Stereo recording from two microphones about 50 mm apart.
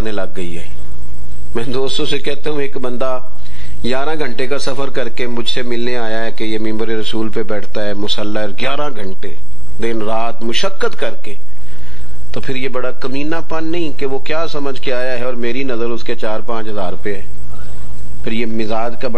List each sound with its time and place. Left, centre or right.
0.0 s a man's voice: centre
18.2 s a man's voice: centre